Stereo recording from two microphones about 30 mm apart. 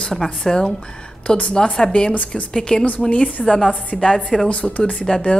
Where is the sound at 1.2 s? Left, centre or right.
Left.